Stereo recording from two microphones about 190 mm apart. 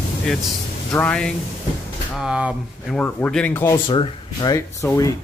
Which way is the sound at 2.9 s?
10° left (ahead or behind).